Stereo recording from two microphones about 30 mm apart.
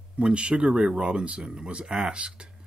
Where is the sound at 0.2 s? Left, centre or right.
Right.